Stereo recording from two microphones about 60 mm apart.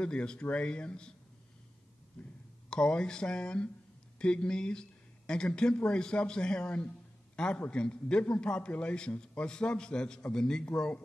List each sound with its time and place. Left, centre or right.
0.0 s a man's voice: centre
2.2 s a man's voice: centre